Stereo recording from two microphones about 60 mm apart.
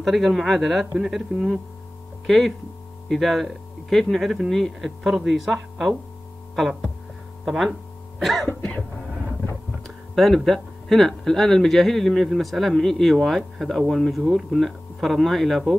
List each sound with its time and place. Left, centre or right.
0.0 s speech: centre
2.2 s speech: centre
6.5 s music: centre
7.4 s speech: centre
8.5 s cough: left
9.8 s speech: centre